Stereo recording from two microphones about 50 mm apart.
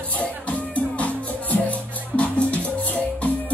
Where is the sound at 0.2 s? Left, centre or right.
Left.